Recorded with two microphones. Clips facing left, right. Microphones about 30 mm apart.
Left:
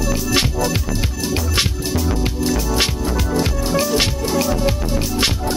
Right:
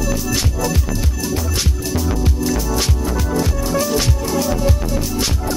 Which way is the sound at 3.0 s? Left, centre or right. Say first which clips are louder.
Even; left.